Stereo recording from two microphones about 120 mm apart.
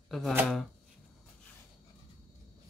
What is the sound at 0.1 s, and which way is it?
Speech, 5° left (ahead or behind).